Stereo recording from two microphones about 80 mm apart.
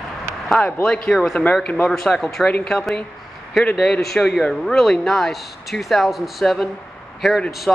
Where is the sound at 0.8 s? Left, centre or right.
Centre.